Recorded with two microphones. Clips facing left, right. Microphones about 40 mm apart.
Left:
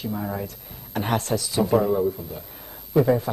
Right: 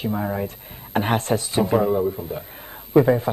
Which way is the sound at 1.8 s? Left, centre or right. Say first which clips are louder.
Right 1 dB; centre.